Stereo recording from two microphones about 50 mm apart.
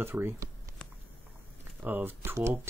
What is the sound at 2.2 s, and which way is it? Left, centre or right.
Speech, right.